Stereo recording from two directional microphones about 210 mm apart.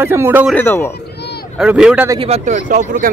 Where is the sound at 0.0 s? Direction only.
10° right (ahead or behind).